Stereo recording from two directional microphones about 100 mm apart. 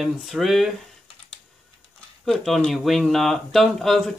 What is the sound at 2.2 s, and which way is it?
Speech, centre (ahead or behind).